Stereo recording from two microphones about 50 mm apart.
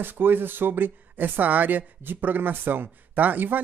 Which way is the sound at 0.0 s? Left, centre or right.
Right.